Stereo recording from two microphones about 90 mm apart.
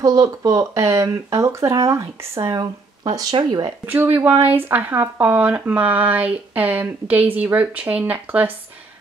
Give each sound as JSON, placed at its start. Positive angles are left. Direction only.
{"t": 0.0, "sound": "speech", "side_deg": -40}
{"t": 2.5, "sound": "speech", "side_deg": -50}
{"t": 3.8, "sound": "speech", "side_deg": -20}